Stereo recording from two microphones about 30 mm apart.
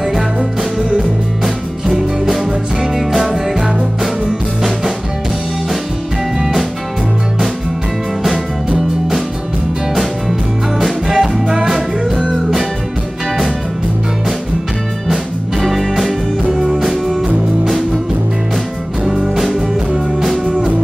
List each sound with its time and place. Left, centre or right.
0.0 s music: centre
8.2 s music: centre
10.8 s music: centre
15.0 s music: centre
19.0 s music: centre